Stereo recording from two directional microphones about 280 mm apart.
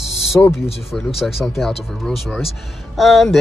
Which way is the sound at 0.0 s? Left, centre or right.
Centre.